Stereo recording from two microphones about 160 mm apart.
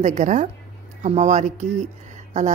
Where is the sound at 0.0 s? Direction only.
50° right (ahead or behind).